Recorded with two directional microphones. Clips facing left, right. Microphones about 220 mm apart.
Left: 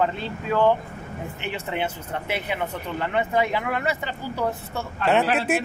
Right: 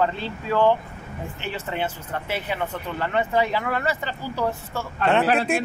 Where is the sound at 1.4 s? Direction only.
15° left (ahead or behind).